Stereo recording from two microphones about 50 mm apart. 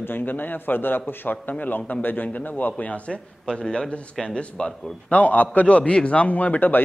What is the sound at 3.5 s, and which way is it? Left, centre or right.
A man's voice, centre.